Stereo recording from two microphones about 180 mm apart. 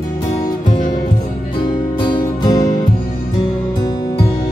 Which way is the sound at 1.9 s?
25° left (ahead or behind).